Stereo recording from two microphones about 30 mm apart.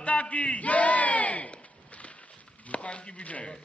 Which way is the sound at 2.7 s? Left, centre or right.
Left.